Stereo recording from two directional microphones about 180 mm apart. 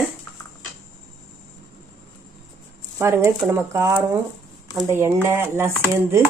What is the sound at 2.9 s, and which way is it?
Speech, 15° right (ahead or behind).